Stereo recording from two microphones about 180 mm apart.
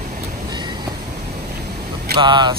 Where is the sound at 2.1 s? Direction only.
25° right (ahead or behind).